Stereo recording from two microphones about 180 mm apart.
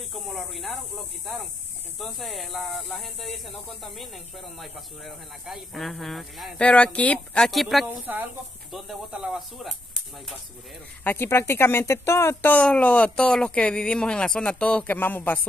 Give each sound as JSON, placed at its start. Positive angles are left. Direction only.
{"t": 0.1, "sound": "speech", "side_deg": 0}
{"t": 11.1, "sound": "speech", "side_deg": 10}